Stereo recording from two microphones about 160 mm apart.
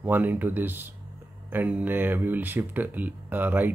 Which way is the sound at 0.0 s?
10° right (ahead or behind).